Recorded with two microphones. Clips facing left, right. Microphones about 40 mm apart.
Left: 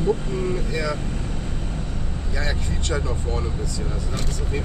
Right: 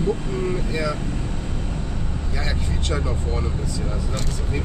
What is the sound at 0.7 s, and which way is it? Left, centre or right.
Speech, right.